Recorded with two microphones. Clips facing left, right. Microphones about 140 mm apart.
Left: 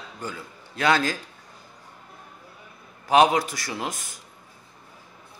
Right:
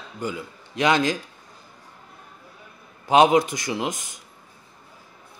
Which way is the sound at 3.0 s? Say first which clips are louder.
Right 2 dB; 20° right (ahead or behind).